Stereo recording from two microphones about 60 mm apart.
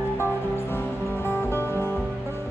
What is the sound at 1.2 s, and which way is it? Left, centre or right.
Music, left.